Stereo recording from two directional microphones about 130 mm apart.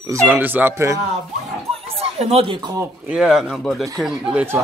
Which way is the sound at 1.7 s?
50° right (ahead or behind).